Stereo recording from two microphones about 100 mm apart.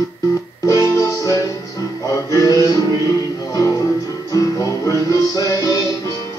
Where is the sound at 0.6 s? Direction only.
35° left (ahead or behind).